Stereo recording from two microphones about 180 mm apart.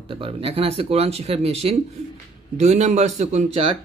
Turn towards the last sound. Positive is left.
turn(degrees=-30)  # may be behind; listen again after turning